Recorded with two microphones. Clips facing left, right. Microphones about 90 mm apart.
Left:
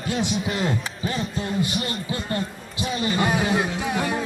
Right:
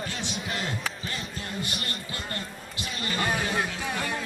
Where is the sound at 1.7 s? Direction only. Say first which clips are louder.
Left 8 dB; centre (ahead or behind).